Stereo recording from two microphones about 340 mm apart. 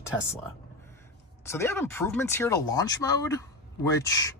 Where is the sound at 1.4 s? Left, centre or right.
Centre.